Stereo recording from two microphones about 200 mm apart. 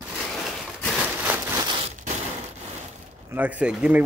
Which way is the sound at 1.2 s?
10° right (ahead or behind).